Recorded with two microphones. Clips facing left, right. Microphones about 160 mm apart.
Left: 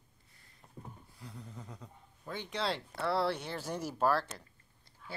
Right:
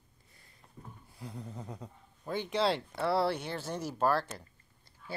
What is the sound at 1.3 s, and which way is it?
Speech, 35° right (ahead or behind).